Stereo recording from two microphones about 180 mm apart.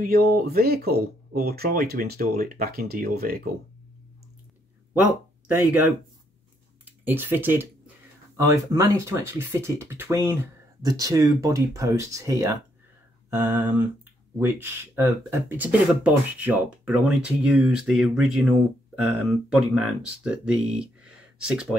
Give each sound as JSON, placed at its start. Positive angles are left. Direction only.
{"t": 0.0, "sound": "speech", "side_deg": -55}
{"t": 7.1, "sound": "speech", "side_deg": -10}